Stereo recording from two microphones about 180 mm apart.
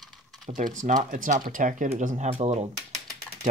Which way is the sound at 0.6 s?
45° right (ahead or behind).